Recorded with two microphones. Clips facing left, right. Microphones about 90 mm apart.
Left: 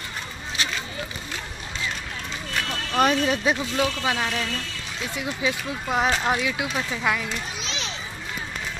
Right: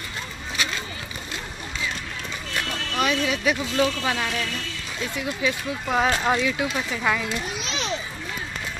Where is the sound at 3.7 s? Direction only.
15° left (ahead or behind).